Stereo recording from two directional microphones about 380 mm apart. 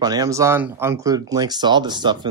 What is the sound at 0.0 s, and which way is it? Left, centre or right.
Speech, centre.